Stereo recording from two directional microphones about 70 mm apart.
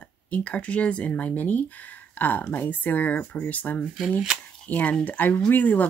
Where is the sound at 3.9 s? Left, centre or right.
Centre.